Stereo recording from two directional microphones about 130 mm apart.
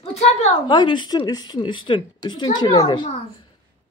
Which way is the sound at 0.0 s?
55° left (ahead or behind).